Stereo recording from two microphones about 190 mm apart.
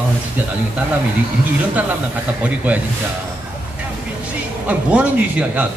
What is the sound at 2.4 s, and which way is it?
Speech, 5° right (ahead or behind).